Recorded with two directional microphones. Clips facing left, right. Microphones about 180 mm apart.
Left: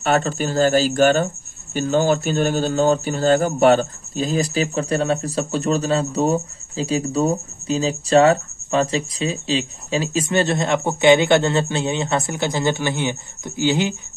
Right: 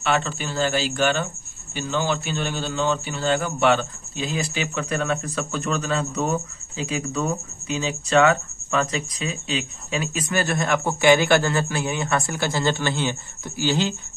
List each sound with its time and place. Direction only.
0.0 s speech: 45° left (ahead or behind); by 13.9 s 15° left (ahead or behind)